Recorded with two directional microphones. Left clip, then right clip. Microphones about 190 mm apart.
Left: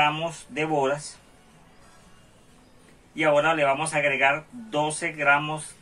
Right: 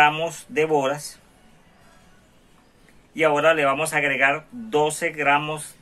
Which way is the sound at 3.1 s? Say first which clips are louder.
Right 3 dB; 55° right (ahead or behind).